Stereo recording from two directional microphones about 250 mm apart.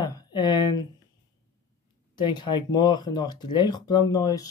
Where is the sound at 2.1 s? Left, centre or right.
Centre.